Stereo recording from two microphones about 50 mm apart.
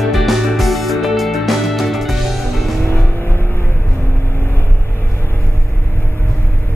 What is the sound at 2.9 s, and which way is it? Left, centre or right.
Vehicle, left.